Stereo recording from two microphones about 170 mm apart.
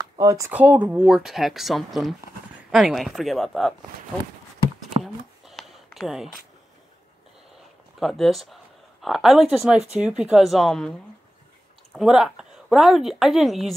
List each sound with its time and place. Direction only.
0.2 s speech: 20° right (ahead or behind)
0.5 s speech: 10° right (ahead or behind)
5.0 s a sound: centre (ahead or behind)
5.9 s speech: centre (ahead or behind)
8.0 s speech: centre (ahead or behind)